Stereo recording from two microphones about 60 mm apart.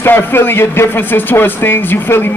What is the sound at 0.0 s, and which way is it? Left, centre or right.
Speech, left.